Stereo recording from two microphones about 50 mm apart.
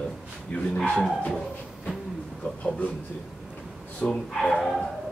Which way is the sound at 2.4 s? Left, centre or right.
Left.